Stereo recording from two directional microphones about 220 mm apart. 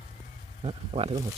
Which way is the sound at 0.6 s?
30° right (ahead or behind).